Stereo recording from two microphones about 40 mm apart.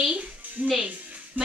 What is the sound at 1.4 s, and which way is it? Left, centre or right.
Music, right.